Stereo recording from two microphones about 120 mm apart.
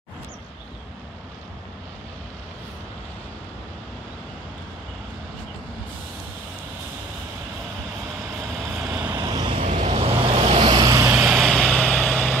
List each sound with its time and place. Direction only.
8.8 s vehicle: 15° right (ahead or behind)
9.1 s vehicle: 35° right (ahead or behind)
9.6 s vehicle: 65° right (ahead or behind)
9.8 s vehicle: 50° right (ahead or behind); by 11.1 s 35° right (ahead or behind)
11.2 s vehicle: 5° right (ahead or behind)
11.8 s vehicle: 10° left (ahead or behind)